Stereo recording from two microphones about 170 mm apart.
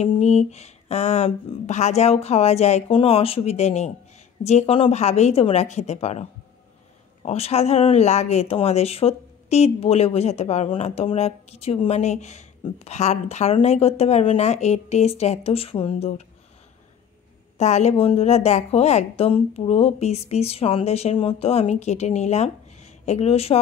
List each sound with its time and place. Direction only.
0.0 s a woman's voice: 40° left (ahead or behind)
7.2 s a woman's voice: 35° left (ahead or behind)
17.6 s a woman's voice: 40° left (ahead or behind)